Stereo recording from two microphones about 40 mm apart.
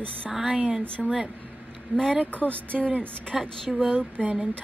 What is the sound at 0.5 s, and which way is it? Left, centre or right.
Speech, right.